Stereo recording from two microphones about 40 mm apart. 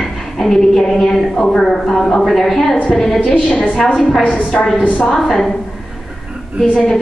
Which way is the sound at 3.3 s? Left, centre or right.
Left.